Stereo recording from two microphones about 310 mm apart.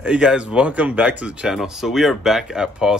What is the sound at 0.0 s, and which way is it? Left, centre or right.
Speech, centre.